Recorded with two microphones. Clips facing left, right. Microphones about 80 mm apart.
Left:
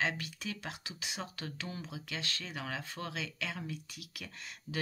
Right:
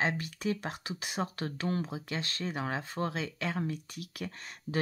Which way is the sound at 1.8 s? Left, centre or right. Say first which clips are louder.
Right 4 dB; right.